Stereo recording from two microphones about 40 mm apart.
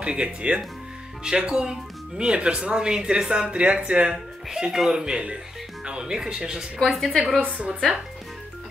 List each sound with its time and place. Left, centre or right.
0.0 s speech: right
4.5 s speech: centre
6.8 s a woman's voice: centre
7.4 s speech: right